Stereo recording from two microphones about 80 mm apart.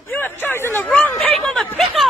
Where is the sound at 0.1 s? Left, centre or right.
Left.